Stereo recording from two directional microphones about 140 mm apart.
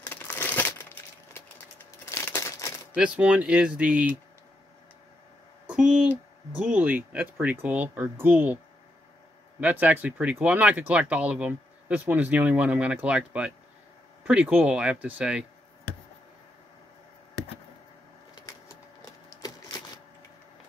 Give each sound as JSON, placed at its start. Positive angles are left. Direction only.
{"t": 0.1, "sound": "crumpling", "side_deg": 15}
{"t": 2.0, "sound": "a sound", "side_deg": 20}
{"t": 2.9, "sound": "speech", "side_deg": -10}
{"t": 5.7, "sound": "speech", "side_deg": -5}
{"t": 9.6, "sound": "speech", "side_deg": -10}